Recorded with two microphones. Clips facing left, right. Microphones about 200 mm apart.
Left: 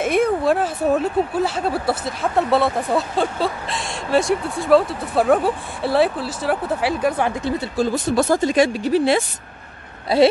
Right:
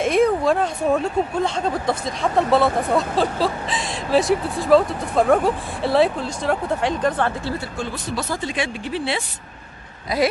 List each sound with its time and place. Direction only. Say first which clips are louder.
0.0 s speech: right 1 dB; centre (ahead or behind)
7.7 s speech: left 8 dB; 40° left (ahead or behind)
10.1 s speech: left 6 dB; 30° left (ahead or behind)